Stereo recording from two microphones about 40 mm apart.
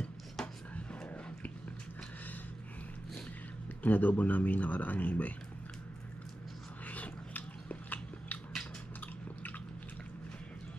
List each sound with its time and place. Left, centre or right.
0.4 s chopping: centre
0.7 s a sound: left
3.8 s speech: left
6.9 s biting: left